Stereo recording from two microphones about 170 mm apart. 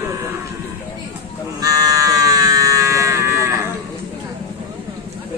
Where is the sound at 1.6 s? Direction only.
20° right (ahead or behind).